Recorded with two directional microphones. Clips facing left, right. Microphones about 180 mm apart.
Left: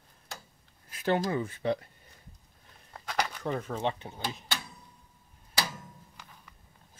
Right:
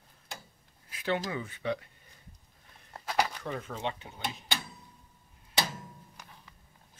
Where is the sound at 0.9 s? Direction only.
45° left (ahead or behind).